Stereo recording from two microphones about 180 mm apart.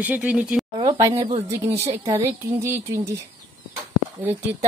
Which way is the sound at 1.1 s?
35° right (ahead or behind).